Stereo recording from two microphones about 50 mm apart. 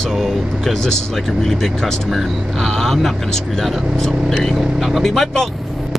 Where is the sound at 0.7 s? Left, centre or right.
Centre.